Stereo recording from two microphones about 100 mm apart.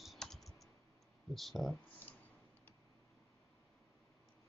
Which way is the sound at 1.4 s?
Centre (ahead or behind).